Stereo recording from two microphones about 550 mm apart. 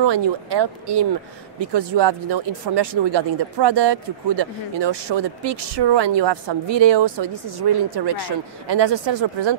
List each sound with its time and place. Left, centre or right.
0.0 s speech: right